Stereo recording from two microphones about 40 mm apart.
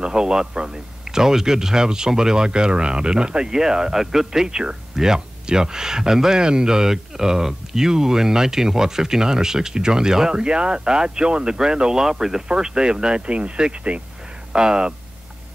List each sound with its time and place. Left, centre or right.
0.0 s speech: centre